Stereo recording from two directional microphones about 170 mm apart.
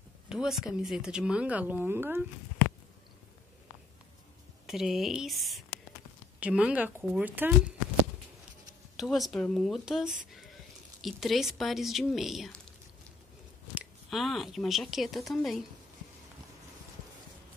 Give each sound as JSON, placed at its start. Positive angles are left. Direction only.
{"t": 0.3, "sound": "speech", "side_deg": -5}
{"t": 4.6, "sound": "speech", "side_deg": 0}
{"t": 8.9, "sound": "speech", "side_deg": 0}
{"t": 13.7, "sound": "speech", "side_deg": 0}